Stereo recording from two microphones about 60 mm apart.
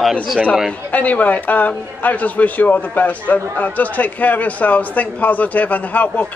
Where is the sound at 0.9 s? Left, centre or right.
Left.